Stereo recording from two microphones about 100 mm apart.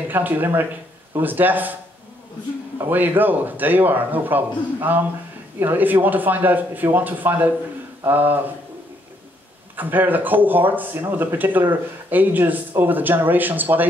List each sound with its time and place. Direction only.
0.1 s speech: 20° right (ahead or behind)
2.8 s speech: 20° right (ahead or behind)
9.8 s speech: 20° right (ahead or behind)